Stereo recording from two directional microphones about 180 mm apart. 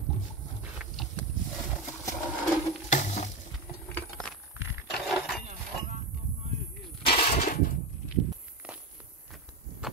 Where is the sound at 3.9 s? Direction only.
5° left (ahead or behind).